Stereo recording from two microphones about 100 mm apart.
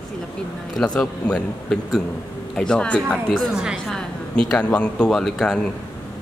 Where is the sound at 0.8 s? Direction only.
10° left (ahead or behind).